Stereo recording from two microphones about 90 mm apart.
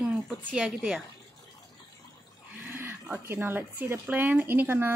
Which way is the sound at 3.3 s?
25° right (ahead or behind).